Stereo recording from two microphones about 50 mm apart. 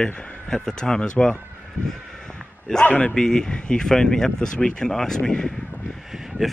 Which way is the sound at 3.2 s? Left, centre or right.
Centre.